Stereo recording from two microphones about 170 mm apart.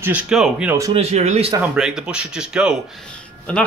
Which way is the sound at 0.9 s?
40° right (ahead or behind).